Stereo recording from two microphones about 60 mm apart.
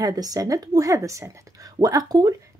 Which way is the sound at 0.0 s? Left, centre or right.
Right.